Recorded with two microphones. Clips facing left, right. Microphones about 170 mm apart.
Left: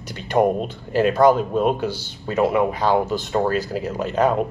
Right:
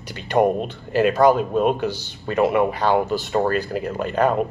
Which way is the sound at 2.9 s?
5° right (ahead or behind).